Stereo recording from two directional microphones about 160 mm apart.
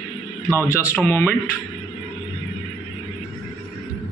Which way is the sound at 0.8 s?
15° left (ahead or behind).